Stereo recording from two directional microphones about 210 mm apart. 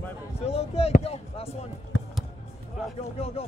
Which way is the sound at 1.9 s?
65° left (ahead or behind).